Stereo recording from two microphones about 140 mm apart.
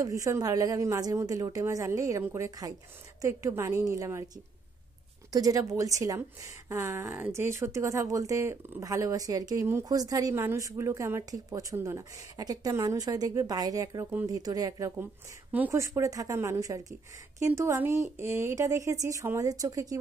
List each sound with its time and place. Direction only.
0.0 s a woman's voice: 25° right (ahead or behind)
5.3 s a woman's voice: 25° right (ahead or behind)